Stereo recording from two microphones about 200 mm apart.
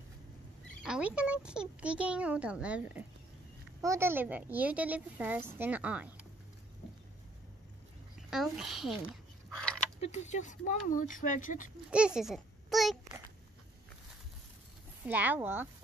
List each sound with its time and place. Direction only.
0.8 s a child's voice: 5° right (ahead or behind)
8.3 s a sound: centre (ahead or behind)
9.9 s speech: 35° left (ahead or behind)
11.9 s a child's voice: 5° right (ahead or behind)
15.0 s a woman's voice: 10° right (ahead or behind)